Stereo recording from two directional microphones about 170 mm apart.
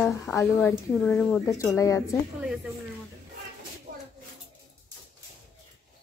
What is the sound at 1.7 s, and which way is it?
Speech, 20° left (ahead or behind).